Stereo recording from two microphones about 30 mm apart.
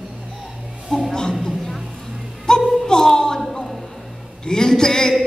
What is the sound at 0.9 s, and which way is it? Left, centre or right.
Music, centre.